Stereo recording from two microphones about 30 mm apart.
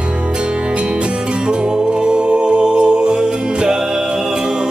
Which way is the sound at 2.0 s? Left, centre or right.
Right.